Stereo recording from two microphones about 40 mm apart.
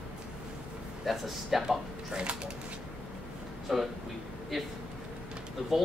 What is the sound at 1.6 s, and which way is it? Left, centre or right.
Speech, right.